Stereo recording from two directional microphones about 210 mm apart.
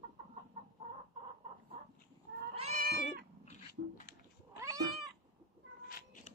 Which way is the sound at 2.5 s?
30° right (ahead or behind).